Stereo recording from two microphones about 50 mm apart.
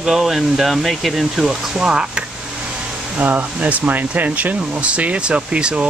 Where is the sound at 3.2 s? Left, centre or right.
Right.